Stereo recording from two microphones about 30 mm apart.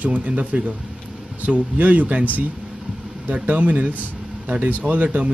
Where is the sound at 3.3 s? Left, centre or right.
Right.